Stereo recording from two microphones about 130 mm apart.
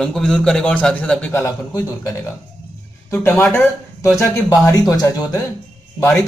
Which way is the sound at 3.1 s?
15° left (ahead or behind).